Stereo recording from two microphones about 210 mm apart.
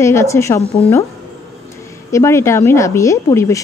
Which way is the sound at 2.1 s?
15° left (ahead or behind).